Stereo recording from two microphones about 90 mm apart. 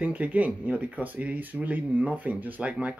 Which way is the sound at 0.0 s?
15° right (ahead or behind).